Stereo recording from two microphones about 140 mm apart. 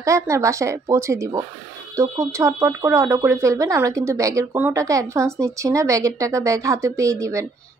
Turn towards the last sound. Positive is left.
turn(degrees=-20)  # may be behind; listen again after turning